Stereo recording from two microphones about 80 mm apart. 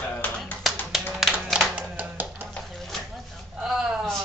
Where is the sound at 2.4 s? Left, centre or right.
Centre.